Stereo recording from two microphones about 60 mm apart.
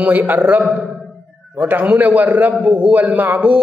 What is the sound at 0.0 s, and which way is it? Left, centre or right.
Speech, right.